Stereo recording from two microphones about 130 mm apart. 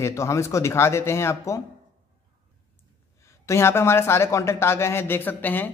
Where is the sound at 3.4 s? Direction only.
20° left (ahead or behind).